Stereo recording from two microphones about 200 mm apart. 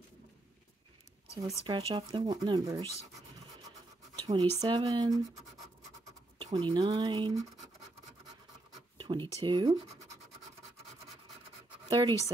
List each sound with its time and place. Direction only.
1.7 s speech: 25° right (ahead or behind)
4.3 s speech: 25° right (ahead or behind)
6.3 s speech: 25° right (ahead or behind)
8.9 s writing: 25° right (ahead or behind)
9.4 s speech: 25° right (ahead or behind)
11.9 s speech: 20° right (ahead or behind)